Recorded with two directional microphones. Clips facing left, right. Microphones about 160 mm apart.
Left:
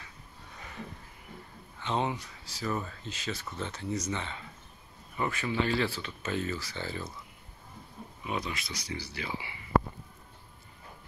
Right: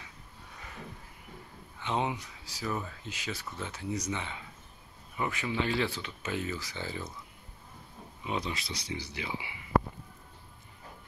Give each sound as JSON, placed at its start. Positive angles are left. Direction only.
{"t": 1.8, "sound": "speech", "side_deg": -15}
{"t": 8.2, "sound": "speech", "side_deg": -25}